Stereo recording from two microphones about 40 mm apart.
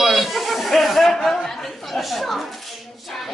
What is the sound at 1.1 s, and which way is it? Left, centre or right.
A man's voice, centre.